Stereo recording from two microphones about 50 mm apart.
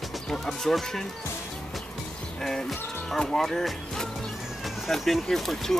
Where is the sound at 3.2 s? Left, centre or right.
Centre.